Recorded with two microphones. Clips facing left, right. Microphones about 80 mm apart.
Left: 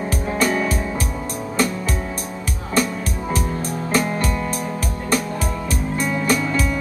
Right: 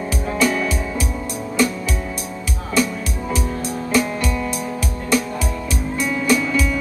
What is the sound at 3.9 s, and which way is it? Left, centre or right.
Music, left.